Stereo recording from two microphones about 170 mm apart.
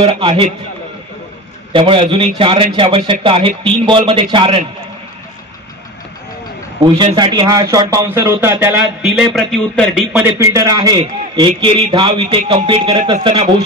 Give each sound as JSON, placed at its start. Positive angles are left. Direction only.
{"t": 0.0, "sound": "speech", "side_deg": -30}
{"t": 1.7, "sound": "a man's voice", "side_deg": -30}
{"t": 6.8, "sound": "a man's voice", "side_deg": -30}
{"t": 9.0, "sound": "a man's voice", "side_deg": 0}
{"t": 10.2, "sound": "a man's voice", "side_deg": -15}